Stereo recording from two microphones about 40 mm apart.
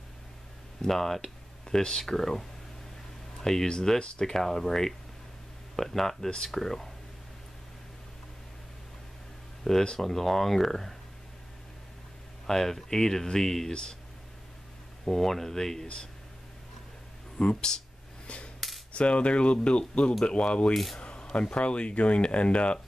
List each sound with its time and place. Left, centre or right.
0.8 s speech: centre
3.3 s a sound: centre
4.0 s speech: left
4.3 s speech: centre
9.9 s speech: centre
12.4 s speech: centre
15.0 s speech: centre
17.4 s speech: left
18.2 s coin: left
18.9 s speech: left
20.7 s speech: centre
21.0 s speech: left